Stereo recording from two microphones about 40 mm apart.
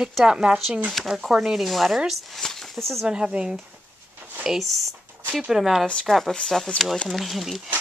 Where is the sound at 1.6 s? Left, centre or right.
Centre.